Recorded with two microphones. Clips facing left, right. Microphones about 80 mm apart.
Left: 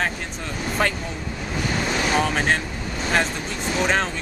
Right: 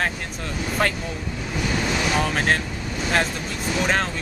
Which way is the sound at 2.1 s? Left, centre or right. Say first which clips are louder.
Left 1 dB; centre.